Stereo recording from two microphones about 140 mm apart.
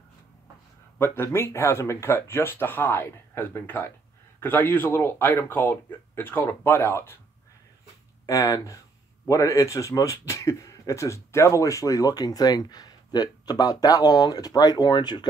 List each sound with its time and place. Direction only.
0.9 s speech: 15° left (ahead or behind)
8.3 s speech: 20° left (ahead or behind)